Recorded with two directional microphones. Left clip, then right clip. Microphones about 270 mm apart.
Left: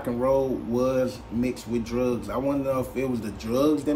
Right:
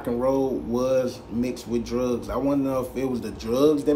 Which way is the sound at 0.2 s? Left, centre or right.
Centre.